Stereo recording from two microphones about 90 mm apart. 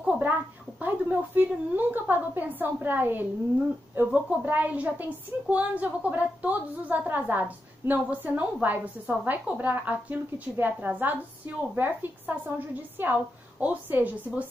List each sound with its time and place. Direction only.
0.0 s a woman's voice: 20° right (ahead or behind)